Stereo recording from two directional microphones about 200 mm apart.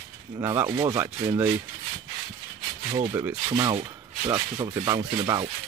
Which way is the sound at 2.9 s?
25° right (ahead or behind).